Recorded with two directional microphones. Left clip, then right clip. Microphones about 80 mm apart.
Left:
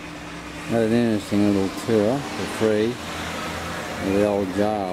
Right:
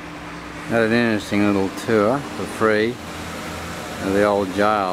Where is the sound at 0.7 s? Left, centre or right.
Left.